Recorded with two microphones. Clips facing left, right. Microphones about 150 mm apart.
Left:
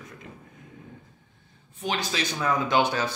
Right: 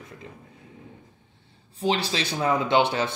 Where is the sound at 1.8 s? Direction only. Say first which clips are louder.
Right 4 dB; 30° right (ahead or behind).